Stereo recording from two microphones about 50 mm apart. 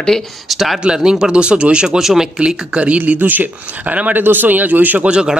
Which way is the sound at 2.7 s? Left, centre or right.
Right.